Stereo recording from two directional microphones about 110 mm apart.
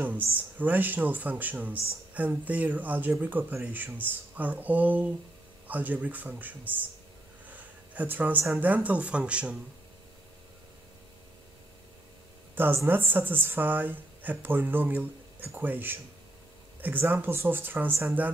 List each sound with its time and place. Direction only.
0.0 s a woman's voice: 15° right (ahead or behind)
12.5 s a woman's voice: 20° right (ahead or behind)